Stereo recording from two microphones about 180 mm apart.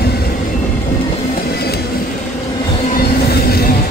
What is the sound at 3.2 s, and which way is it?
Train, 60° left (ahead or behind).